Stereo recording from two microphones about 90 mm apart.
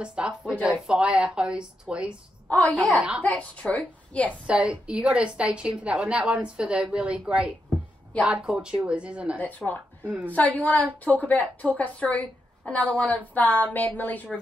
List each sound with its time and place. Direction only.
0.0 s a woman's voice: 10° right (ahead or behind)
3.2 s a woman's voice: 15° left (ahead or behind)
4.5 s a woman's voice: 15° right (ahead or behind)
9.4 s a woman's voice: 15° left (ahead or behind)
10.0 s a woman's voice: 15° right (ahead or behind)
10.3 s a woman's voice: 15° left (ahead or behind)